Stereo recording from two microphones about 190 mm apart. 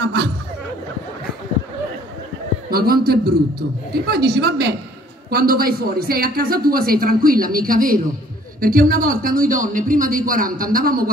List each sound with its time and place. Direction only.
2.7 s a man's voice: 50° right (ahead or behind)